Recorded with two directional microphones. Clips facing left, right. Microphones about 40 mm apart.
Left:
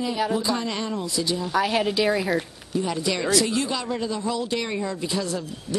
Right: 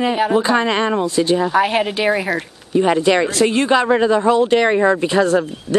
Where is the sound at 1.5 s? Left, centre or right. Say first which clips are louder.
Right 6 dB; right.